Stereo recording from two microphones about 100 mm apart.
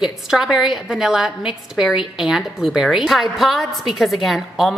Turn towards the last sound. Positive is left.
turn(degrees=0)  # may be behind; listen again after turning